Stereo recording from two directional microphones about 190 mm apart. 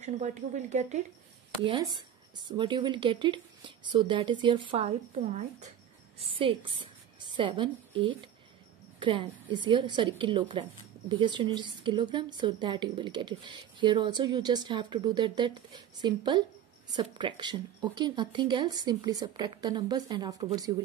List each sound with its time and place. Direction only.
0.0 s speech: 40° right (ahead or behind)
1.6 s a woman's voice: 25° right (ahead or behind)